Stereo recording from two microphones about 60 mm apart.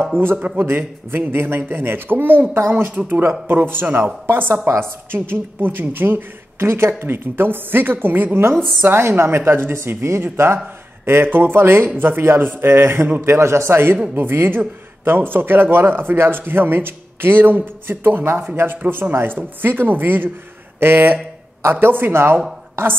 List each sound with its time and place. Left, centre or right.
0.2 s a man's voice: right
9.8 s a man's voice: right